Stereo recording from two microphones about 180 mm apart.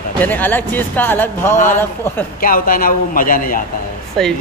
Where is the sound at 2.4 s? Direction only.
50° left (ahead or behind).